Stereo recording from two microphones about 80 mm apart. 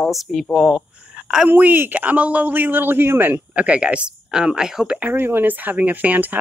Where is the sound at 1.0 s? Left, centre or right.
Centre.